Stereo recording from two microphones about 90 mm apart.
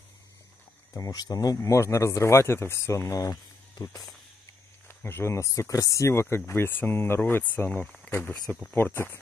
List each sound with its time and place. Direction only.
0.9 s speech: 45° left (ahead or behind)
4.8 s speech: 25° left (ahead or behind)